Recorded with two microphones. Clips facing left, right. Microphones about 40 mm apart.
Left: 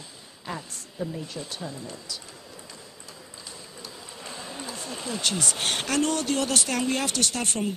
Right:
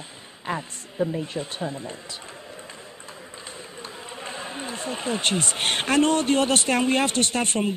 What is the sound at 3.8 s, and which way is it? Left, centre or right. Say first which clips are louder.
Speech: right 5 dB; right.